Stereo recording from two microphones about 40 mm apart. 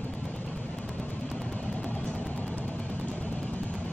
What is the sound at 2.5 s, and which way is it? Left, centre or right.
Music, left.